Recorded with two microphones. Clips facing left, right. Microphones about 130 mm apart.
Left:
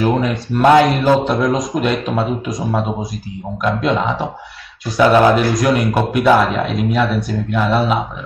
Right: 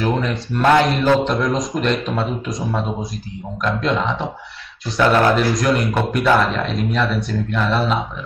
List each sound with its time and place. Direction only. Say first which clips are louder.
0.2 s a man's voice: left 4 dB; 5° left (ahead or behind)
5.4 s a man's voice: left 2 dB; centre (ahead or behind)